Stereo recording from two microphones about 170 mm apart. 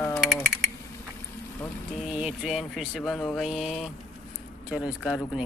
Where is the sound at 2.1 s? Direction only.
5° right (ahead or behind).